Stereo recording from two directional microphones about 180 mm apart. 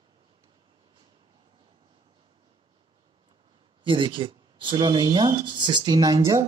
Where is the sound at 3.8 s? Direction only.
25° right (ahead or behind).